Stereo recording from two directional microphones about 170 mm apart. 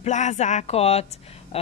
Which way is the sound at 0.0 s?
45° left (ahead or behind).